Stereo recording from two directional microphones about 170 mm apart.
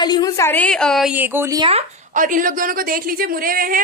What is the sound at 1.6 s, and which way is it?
A woman's voice, 40° right (ahead or behind).